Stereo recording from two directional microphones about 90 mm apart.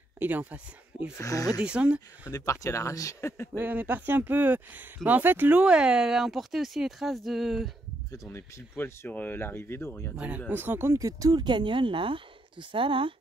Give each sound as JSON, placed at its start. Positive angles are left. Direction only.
{"t": 0.2, "sound": "speech", "side_deg": -20}
{"t": 1.1, "sound": "speech", "side_deg": 35}
{"t": 1.6, "sound": "speech", "side_deg": -10}
{"t": 2.3, "sound": "speech", "side_deg": 35}
{"t": 3.5, "sound": "speech", "side_deg": -20}
{"t": 5.6, "sound": "speech", "side_deg": -10}
{"t": 8.1, "sound": "speech", "side_deg": 35}
{"t": 10.1, "sound": "speech", "side_deg": -15}
{"t": 11.0, "sound": "speech", "side_deg": -40}